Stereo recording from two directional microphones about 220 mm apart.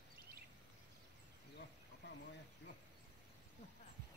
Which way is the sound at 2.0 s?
50° left (ahead or behind).